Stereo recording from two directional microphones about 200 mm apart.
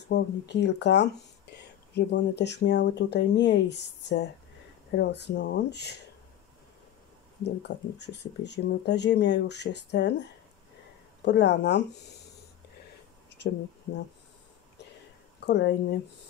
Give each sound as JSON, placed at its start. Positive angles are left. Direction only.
{"t": 0.0, "sound": "speech", "side_deg": 60}
{"t": 7.4, "sound": "speech", "side_deg": 60}
{"t": 11.2, "sound": "speech", "side_deg": 60}
{"t": 15.4, "sound": "speech", "side_deg": 55}